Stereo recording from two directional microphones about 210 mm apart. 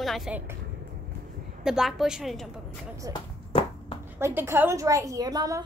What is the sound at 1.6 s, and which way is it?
Speech, centre (ahead or behind).